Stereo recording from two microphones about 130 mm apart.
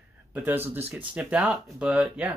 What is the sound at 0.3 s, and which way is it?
Speech, 15° right (ahead or behind).